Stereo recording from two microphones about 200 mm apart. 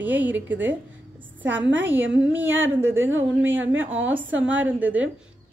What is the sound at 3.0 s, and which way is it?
Speech, 80° right.